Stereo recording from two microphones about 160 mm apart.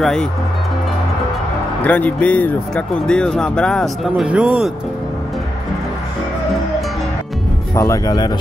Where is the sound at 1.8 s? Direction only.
10° left (ahead or behind).